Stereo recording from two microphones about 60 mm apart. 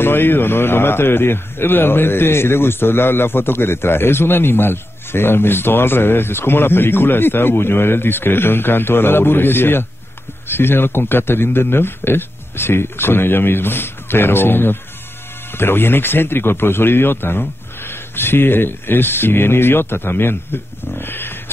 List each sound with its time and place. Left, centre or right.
0.0 s a man's voice: left